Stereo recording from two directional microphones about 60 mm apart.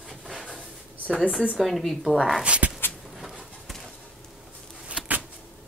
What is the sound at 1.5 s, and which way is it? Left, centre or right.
Speech, centre.